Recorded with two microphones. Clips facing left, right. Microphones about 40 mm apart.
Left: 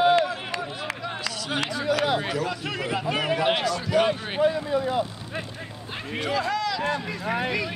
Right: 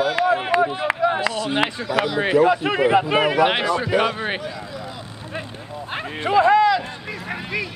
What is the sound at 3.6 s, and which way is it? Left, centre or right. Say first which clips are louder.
Speech: right 3 dB; right.